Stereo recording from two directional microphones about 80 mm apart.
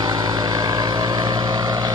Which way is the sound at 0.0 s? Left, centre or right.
Right.